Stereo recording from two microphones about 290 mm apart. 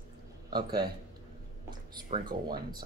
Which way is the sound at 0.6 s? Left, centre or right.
Right.